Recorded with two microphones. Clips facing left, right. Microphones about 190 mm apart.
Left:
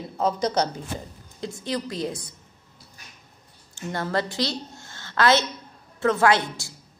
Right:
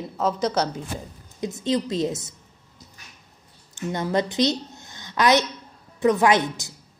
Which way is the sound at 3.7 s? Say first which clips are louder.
Right 3 dB; 20° right (ahead or behind).